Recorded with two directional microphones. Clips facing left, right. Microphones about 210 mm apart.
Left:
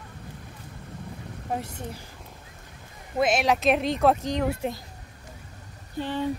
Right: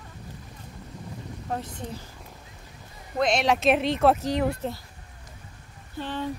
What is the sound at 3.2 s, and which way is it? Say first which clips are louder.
Speech: even; 5° left (ahead or behind).